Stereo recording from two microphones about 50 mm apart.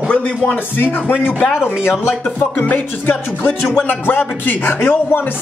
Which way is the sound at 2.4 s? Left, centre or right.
Left.